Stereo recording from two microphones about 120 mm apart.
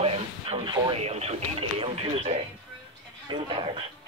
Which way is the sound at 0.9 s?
60° right (ahead or behind).